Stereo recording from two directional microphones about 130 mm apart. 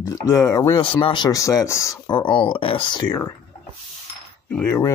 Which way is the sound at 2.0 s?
35° left (ahead or behind).